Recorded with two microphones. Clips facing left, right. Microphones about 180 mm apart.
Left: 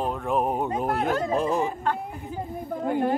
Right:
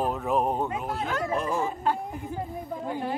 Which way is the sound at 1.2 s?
30° left (ahead or behind).